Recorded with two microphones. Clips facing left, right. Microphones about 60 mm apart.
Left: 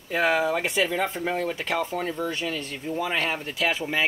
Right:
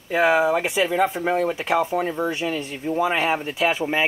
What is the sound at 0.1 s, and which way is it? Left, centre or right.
Speech, centre.